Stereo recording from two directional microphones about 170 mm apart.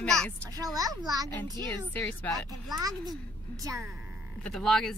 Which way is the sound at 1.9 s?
10° left (ahead or behind).